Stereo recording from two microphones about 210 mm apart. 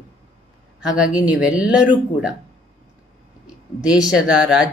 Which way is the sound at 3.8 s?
Centre (ahead or behind).